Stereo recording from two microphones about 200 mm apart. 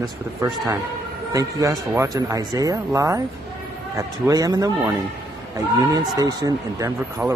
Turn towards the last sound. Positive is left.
turn(degrees=-15)  # may be behind; listen again after turning